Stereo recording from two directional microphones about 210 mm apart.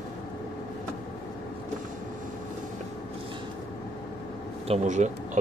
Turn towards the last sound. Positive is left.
turn(degrees=-35)  # may be behind; listen again after turning